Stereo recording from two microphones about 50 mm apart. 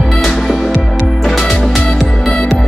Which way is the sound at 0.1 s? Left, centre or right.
Centre.